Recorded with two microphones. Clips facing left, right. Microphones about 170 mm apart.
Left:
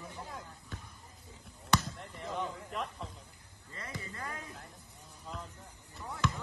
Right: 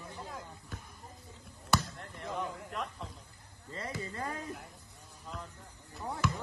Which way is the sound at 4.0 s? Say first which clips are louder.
Right 5 dB; 30° right (ahead or behind).